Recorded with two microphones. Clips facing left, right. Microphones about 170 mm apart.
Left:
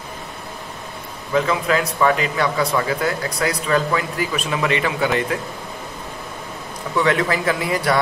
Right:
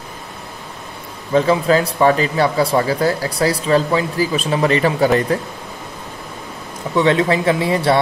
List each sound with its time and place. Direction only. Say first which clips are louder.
1.3 s speech: right 5 dB; 30° right (ahead or behind)
7.0 s speech: right 4 dB; 25° right (ahead or behind)